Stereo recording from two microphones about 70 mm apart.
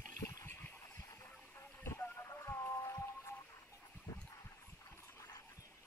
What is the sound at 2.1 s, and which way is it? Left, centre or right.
Music, left.